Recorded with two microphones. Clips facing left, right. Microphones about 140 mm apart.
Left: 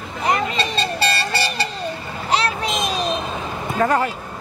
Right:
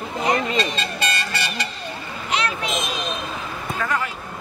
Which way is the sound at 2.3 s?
35° left (ahead or behind).